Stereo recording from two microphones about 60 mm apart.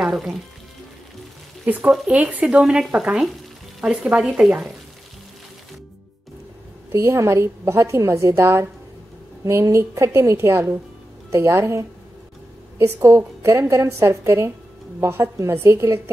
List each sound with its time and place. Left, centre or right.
0.1 s speech: centre
1.7 s speech: right
6.9 s a woman's voice: right
7.2 s a woman's voice: right
11.2 s a woman's voice: right